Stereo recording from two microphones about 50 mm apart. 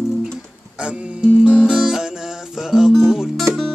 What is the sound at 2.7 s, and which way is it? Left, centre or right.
Music, centre.